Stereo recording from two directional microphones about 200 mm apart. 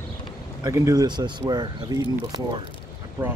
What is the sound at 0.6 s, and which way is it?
Speech, 15° right (ahead or behind).